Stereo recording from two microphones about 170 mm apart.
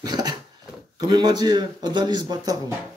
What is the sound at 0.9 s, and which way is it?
Speech, 25° right (ahead or behind).